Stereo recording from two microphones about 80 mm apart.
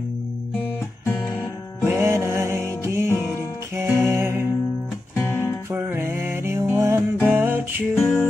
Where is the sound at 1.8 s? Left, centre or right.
Right.